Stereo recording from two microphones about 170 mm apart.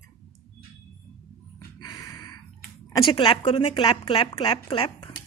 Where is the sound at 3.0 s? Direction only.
30° left (ahead or behind).